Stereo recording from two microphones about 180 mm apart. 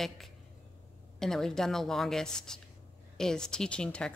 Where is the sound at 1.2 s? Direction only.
5° left (ahead or behind).